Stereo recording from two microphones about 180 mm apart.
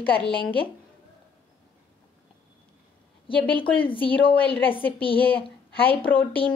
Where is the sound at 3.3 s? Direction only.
30° left (ahead or behind).